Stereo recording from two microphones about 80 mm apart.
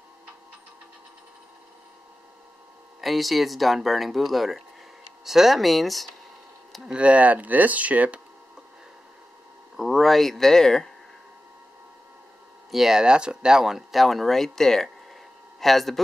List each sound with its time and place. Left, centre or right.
3.0 s speech: centre
6.9 s speech: centre
9.8 s speech: centre
12.7 s speech: centre